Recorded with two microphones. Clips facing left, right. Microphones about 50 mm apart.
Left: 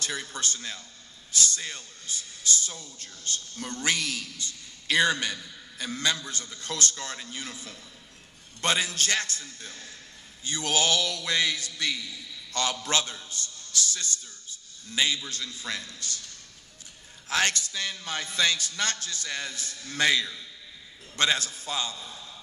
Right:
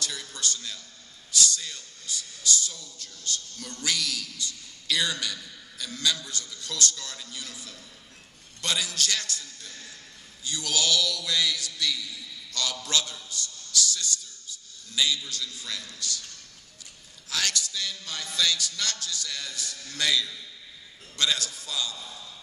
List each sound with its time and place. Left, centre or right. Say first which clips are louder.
0.0 s a man's voice: left 2 dB; left
17.3 s speech: left 4 dB; left